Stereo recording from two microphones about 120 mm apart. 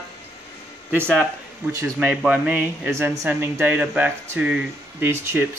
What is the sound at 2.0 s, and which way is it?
Speech, 5° right (ahead or behind).